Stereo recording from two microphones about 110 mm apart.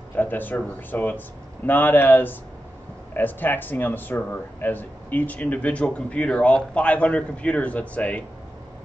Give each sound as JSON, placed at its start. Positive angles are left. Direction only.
{"t": 0.1, "sound": "speech", "side_deg": 15}